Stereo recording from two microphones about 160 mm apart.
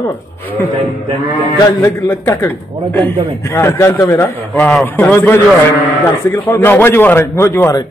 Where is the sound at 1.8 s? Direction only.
15° left (ahead or behind).